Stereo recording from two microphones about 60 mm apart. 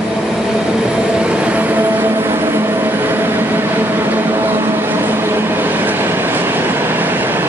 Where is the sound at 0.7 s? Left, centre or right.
Centre.